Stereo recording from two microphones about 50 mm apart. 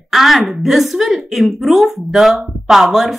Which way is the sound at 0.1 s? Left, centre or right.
Centre.